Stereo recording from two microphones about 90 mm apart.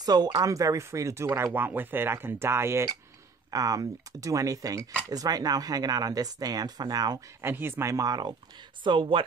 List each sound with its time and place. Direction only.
0.0 s speech: 50° right (ahead or behind)
0.5 s speech: 40° right (ahead or behind)
7.4 s speech: 25° right (ahead or behind); by 8.4 s 50° right (ahead or behind)
8.8 s speech: 65° right (ahead or behind)